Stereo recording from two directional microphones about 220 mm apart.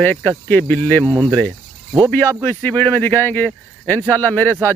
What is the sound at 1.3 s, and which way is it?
Cricket, 5° left (ahead or behind).